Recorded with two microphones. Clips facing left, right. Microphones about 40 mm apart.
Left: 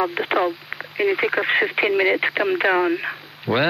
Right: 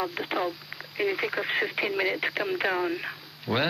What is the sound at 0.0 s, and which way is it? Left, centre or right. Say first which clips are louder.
Speech: left 8 dB; left.